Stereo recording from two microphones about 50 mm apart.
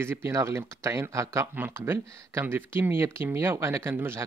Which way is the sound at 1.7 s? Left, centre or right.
Right.